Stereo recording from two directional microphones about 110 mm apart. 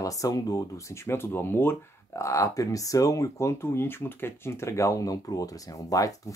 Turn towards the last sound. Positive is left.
turn(degrees=30)  # may be behind; listen again after turning